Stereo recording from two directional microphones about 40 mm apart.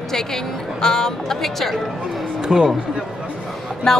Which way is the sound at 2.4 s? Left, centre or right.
Right.